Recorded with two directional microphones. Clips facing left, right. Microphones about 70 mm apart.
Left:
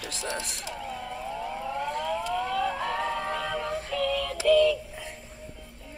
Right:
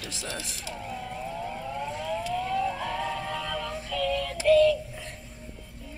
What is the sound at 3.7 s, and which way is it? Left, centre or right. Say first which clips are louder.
Synthetic singing: left 3 dB; left.